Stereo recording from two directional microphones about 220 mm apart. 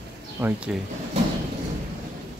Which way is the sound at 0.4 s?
5° right (ahead or behind).